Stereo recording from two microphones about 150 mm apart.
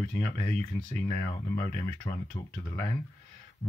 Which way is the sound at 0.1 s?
15° left (ahead or behind).